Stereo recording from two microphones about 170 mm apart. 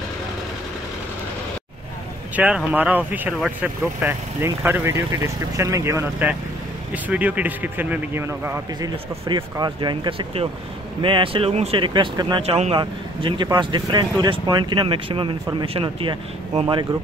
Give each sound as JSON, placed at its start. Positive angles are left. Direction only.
{"t": 2.3, "sound": "speech", "side_deg": -10}
{"t": 12.4, "sound": "speech", "side_deg": -35}